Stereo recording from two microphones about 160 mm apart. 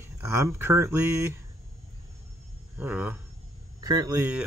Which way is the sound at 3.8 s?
25° right (ahead or behind).